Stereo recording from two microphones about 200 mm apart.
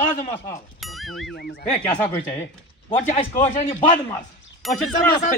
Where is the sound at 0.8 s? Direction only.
Centre (ahead or behind).